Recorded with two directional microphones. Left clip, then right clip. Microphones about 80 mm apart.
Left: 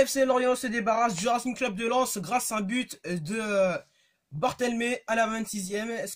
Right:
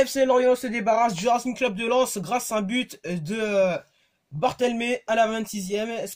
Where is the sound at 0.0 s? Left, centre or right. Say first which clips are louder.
Right 4 dB; left.